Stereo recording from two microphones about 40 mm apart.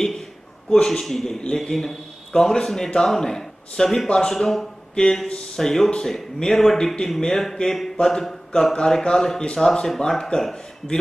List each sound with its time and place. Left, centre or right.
0.7 s speech: centre
8.0 s a sound: centre
8.7 s speech: centre